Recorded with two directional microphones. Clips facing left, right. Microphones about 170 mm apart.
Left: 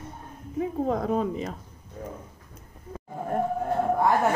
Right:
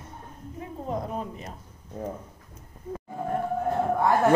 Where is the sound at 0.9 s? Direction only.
90° left.